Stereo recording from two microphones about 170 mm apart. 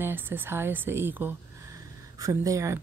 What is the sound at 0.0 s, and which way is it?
A woman's voice, 10° right (ahead or behind).